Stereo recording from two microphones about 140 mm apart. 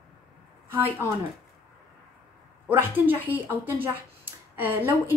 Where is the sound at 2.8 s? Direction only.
15° right (ahead or behind).